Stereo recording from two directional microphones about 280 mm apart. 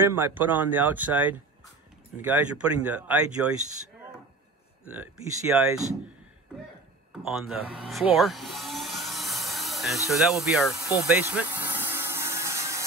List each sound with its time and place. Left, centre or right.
0.0 s speech: centre
3.4 s speech: right
4.8 s speech: centre
7.1 s a sound: centre